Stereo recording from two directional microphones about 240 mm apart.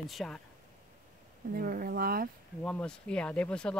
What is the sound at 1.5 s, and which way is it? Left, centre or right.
Speech, right.